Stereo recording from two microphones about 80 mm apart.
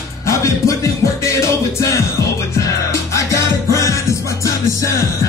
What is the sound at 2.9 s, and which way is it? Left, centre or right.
Music, left.